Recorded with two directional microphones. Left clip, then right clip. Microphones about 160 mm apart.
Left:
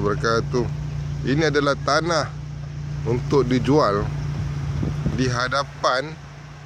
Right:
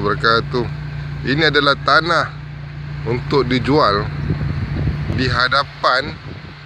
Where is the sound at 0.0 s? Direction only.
5° left (ahead or behind).